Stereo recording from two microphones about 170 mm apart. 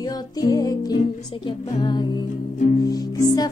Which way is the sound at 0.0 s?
20° left (ahead or behind).